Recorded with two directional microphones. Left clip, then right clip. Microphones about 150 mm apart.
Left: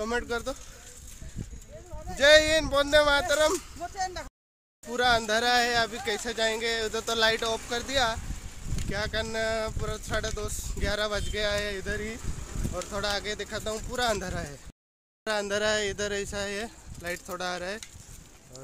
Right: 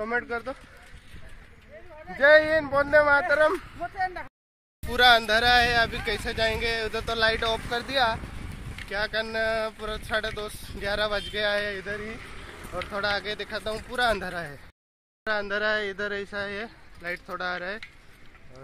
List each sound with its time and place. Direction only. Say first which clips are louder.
0.0 s speech: right 1 dB; 30° left (ahead or behind)
2.0 s speech: right 1 dB; 15° left (ahead or behind)
2.7 s speech: right 3 dB; 25° left (ahead or behind)
4.0 s speech: right 3 dB; 15° right (ahead or behind)
4.9 s speech: right 5 dB; 10° left (ahead or behind)
7.4 s speech: right 3 dB; 15° left (ahead or behind)
11.7 s speech: even; 35° left (ahead or behind)
12.9 s speech: right 3 dB; 15° left (ahead or behind)
15.2 s speech: right 1 dB; 20° left (ahead or behind)